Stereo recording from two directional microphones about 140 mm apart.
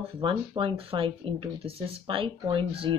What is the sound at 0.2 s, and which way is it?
Speech, 40° right (ahead or behind).